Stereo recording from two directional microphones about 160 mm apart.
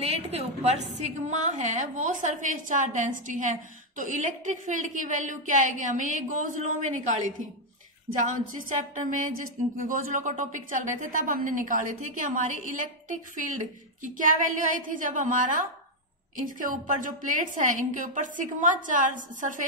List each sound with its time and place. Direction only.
0.0 s a woman's voice: 40° right (ahead or behind); by 19.6 s 55° right (ahead or behind)